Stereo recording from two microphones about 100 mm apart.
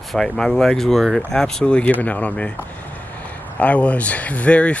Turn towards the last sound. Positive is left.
turn(degrees=15)  # may be behind; listen again after turning